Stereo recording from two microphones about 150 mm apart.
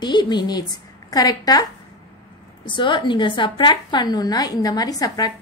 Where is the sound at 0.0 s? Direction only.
30° left (ahead or behind).